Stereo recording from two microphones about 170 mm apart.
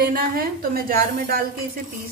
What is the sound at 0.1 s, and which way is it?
A woman's voice, 60° right (ahead or behind).